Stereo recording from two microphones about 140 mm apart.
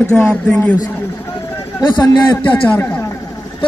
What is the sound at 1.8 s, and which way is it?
Speech, 30° left (ahead or behind).